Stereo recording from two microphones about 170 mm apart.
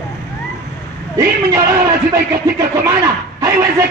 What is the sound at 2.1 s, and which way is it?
Speech, 20° right (ahead or behind).